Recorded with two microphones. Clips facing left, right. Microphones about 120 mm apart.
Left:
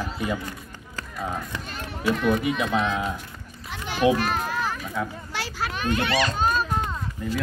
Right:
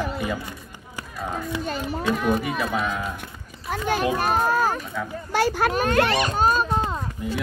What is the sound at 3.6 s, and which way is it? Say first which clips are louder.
Children playing: right 9 dB; 45° right (ahead or behind).